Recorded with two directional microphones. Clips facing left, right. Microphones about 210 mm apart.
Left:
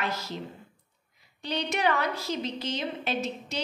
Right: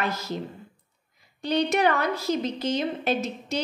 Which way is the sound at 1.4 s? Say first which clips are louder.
Right 6 dB; 50° right (ahead or behind).